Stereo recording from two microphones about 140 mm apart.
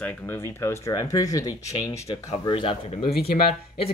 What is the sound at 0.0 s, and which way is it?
Speech, 15° left (ahead or behind).